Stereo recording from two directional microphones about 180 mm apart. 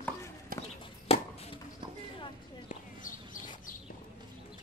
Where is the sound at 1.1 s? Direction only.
35° left (ahead or behind).